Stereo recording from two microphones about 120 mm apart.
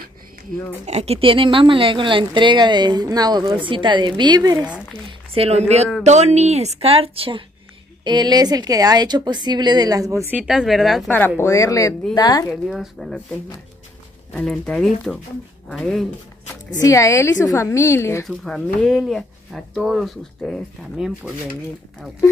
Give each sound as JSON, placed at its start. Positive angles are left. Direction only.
{"t": 0.8, "sound": "a woman's voice", "side_deg": -60}
{"t": 5.3, "sound": "a woman's voice", "side_deg": -55}
{"t": 8.0, "sound": "a woman's voice", "side_deg": -40}
{"t": 10.3, "sound": "speech", "side_deg": -5}
{"t": 11.1, "sound": "a woman's voice", "side_deg": 15}
{"t": 12.6, "sound": "speech", "side_deg": -5}
{"t": 14.4, "sound": "speech", "side_deg": 0}
{"t": 16.7, "sound": "a woman's voice", "side_deg": 25}
{"t": 18.2, "sound": "speech", "side_deg": 5}